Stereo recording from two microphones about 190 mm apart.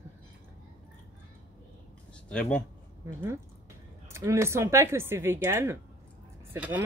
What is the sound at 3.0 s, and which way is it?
Speech, 15° right (ahead or behind).